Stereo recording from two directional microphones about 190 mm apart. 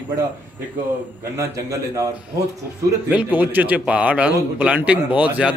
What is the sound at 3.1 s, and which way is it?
Speech, 10° right (ahead or behind).